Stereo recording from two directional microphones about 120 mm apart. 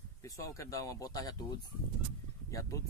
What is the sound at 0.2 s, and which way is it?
Speech, 25° left (ahead or behind).